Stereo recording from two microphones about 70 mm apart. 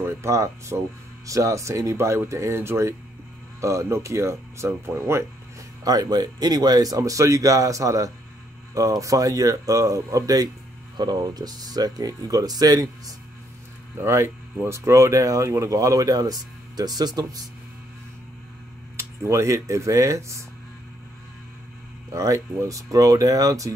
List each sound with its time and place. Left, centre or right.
0.0 s speech: right
5.9 s speech: right
11.0 s speech: right
13.9 s speech: right
18.9 s speech: right
22.1 s speech: right